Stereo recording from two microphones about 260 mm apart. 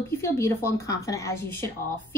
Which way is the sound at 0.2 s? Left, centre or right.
Centre.